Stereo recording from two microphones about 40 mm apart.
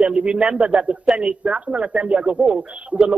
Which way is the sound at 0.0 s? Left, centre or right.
Right.